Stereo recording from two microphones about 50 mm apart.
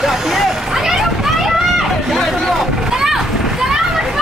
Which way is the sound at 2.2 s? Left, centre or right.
Centre.